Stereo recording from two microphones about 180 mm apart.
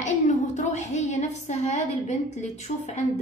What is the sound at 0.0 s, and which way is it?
A woman's voice, 40° left (ahead or behind).